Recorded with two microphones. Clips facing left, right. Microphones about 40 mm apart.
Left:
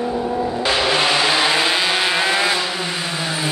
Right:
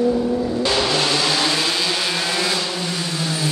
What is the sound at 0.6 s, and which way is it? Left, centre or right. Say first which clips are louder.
Vehicle: left 4 dB; left.